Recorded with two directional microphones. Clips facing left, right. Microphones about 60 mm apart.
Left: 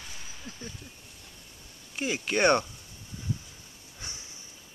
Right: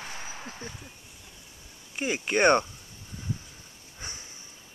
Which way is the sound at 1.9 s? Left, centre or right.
Centre.